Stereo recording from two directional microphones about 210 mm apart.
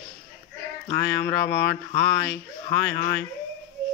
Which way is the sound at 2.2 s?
55° left (ahead or behind).